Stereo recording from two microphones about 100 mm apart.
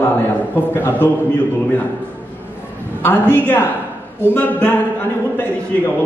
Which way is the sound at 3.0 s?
20° left (ahead or behind).